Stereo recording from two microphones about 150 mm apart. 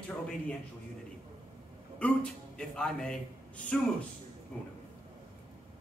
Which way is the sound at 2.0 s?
5° left (ahead or behind).